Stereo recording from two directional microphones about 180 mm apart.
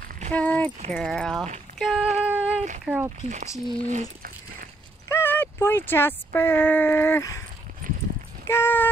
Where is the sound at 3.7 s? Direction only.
45° right (ahead or behind).